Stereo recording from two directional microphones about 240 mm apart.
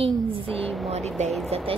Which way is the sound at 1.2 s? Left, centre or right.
Right.